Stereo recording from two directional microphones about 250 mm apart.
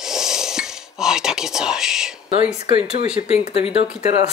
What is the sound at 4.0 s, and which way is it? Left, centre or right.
Speech, left.